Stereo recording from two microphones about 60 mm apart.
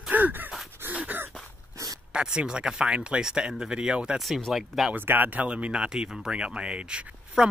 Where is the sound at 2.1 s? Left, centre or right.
Centre.